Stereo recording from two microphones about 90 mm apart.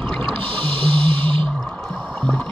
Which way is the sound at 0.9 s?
85° right.